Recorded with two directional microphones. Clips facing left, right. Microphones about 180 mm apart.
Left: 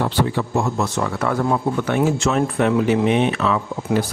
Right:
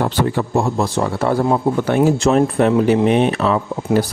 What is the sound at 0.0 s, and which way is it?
Speech, 35° right (ahead or behind).